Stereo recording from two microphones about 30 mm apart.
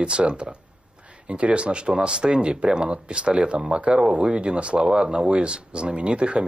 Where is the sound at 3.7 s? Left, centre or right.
Right.